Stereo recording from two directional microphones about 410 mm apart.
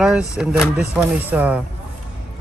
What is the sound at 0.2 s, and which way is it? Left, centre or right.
Speech, centre.